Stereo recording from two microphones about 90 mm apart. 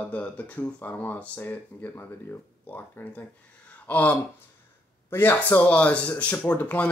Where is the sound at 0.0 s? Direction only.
15° left (ahead or behind).